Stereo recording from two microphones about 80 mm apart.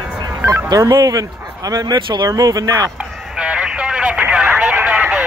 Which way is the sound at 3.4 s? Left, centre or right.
Centre.